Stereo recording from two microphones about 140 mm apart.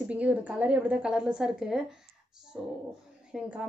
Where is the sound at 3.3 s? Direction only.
10° right (ahead or behind).